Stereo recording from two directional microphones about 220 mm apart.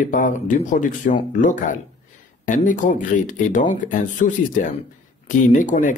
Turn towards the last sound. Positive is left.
turn(degrees=35)  # may be behind; listen again after turning